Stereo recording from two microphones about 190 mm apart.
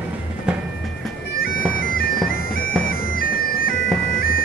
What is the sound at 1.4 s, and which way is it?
Bagpipes, 50° left (ahead or behind).